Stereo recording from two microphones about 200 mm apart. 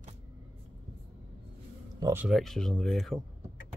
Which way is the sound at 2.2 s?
Centre (ahead or behind).